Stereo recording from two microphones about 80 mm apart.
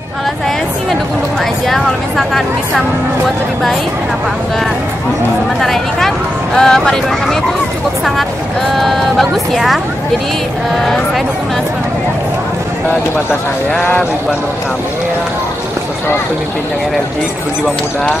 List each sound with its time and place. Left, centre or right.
1.7 s speech: centre
5.6 s speech: centre
8.7 s speech: centre
13.7 s speech: centre